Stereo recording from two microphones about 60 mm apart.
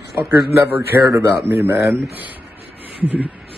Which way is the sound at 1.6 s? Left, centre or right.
Right.